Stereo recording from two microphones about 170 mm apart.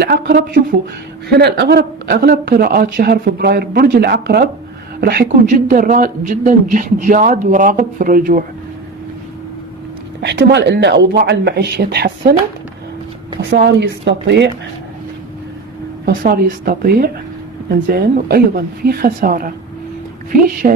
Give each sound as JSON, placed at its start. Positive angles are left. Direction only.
{"t": 0.0, "sound": "speech", "side_deg": -65}
{"t": 5.5, "sound": "speech", "side_deg": -50}
{"t": 10.2, "sound": "speech", "side_deg": -90}
{"t": 13.5, "sound": "a woman's voice", "side_deg": -90}
{"t": 16.1, "sound": "speech", "side_deg": -60}
{"t": 20.6, "sound": "speech", "side_deg": -50}